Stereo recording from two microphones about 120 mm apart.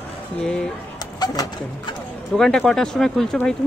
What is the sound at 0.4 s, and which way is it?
Speech, 5° left (ahead or behind).